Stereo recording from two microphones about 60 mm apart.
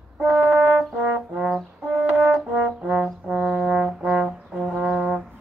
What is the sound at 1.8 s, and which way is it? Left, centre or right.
Brass instrument, right.